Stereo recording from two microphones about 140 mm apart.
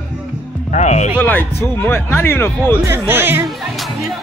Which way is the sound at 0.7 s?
55° left (ahead or behind).